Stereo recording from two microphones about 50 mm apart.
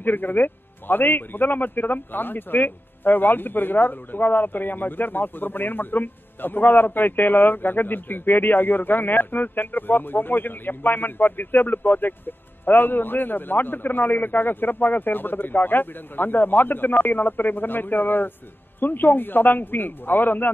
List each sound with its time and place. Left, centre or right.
0.0 s a man's voice: left